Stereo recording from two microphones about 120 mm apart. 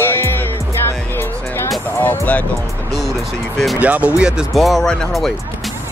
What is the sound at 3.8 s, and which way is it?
Speech, 10° right (ahead or behind).